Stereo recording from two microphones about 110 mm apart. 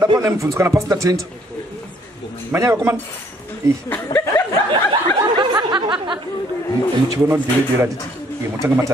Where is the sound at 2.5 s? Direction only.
25° right (ahead or behind).